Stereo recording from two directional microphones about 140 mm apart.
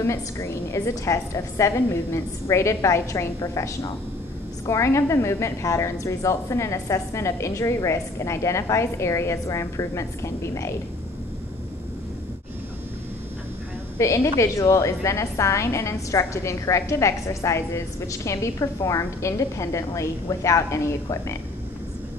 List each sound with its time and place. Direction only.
0.0 s a woman's voice: 20° left (ahead or behind)
13.9 s a woman's voice: 20° left (ahead or behind)